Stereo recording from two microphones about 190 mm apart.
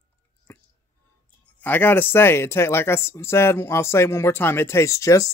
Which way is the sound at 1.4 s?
10° left (ahead or behind).